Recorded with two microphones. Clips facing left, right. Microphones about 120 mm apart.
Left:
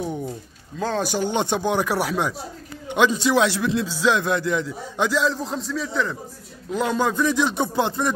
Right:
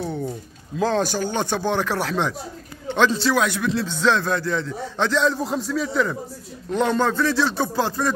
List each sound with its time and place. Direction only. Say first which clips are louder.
0.0 s a sound: right 1 dB; 10° left (ahead or behind)
0.7 s speech: right 4 dB; centre (ahead or behind)
1.0 s a man's voice: left 1 dB; 20° left (ahead or behind)
3.8 s a man's voice: right 2 dB; 10° left (ahead or behind)